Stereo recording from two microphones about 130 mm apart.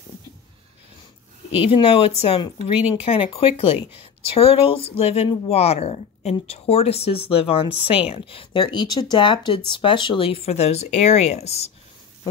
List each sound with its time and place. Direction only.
1.6 s speech: 45° left (ahead or behind)